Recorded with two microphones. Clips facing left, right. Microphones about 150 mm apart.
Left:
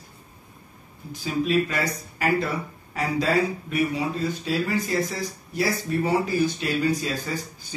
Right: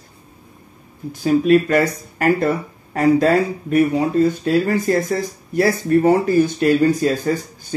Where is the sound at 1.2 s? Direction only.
55° right (ahead or behind).